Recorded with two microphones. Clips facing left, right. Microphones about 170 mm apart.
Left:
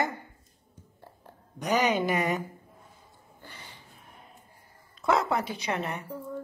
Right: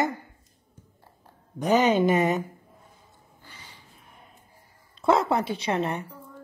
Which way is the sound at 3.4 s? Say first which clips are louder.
Left 3 dB; 55° left (ahead or behind).